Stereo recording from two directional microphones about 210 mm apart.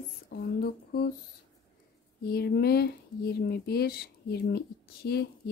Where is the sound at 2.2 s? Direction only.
50° left (ahead or behind).